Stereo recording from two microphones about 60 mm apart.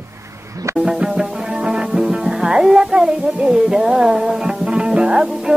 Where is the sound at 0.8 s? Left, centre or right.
Centre.